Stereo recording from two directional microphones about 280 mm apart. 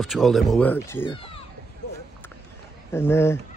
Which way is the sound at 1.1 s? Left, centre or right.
Centre.